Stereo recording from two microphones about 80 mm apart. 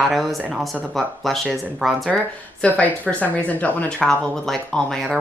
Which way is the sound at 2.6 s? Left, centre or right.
Centre.